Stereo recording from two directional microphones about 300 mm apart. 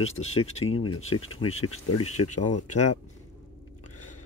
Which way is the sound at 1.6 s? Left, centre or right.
Left.